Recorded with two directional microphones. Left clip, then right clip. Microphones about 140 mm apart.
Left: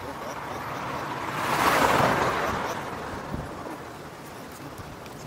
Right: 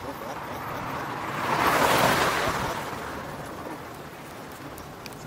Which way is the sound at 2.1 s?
20° right (ahead or behind).